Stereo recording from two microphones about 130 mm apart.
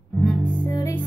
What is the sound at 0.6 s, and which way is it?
Music, 30° left (ahead or behind).